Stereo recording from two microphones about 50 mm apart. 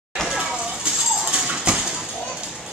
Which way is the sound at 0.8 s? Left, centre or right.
Centre.